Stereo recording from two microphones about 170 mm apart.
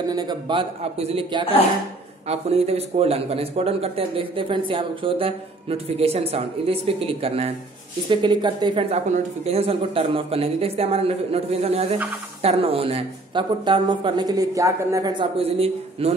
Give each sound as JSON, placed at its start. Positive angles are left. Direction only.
{"t": 0.1, "sound": "speech", "side_deg": -25}